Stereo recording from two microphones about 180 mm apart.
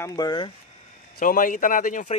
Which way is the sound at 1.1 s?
50° left (ahead or behind).